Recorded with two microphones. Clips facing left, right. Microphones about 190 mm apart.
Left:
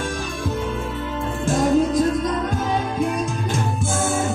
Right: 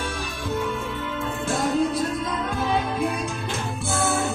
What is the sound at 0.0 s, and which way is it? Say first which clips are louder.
Music: left 4 dB; 45° left (ahead or behind).